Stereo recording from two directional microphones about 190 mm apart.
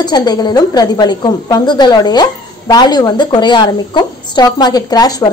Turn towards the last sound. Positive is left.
turn(degrees=20)  # may be behind; listen again after turning